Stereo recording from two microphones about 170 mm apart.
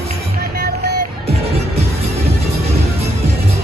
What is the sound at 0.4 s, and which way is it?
Music, 70° right (ahead or behind).